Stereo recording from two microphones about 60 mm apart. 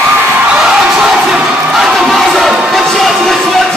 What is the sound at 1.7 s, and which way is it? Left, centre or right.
Crowd, centre.